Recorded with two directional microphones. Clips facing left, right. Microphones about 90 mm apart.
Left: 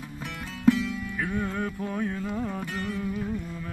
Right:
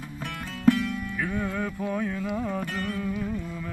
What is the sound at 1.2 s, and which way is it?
Music, 30° left (ahead or behind).